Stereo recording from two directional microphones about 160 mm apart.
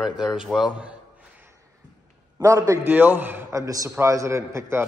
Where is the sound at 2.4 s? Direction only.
20° right (ahead or behind).